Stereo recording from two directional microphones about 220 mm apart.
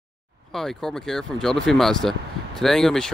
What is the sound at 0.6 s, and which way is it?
Speech, centre (ahead or behind).